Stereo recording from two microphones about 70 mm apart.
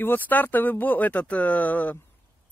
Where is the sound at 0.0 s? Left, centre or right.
Left.